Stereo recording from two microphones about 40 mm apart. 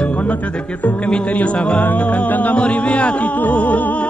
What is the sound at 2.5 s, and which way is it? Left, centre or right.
Music, left.